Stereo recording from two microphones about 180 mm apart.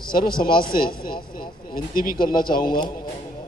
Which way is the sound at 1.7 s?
50° left (ahead or behind).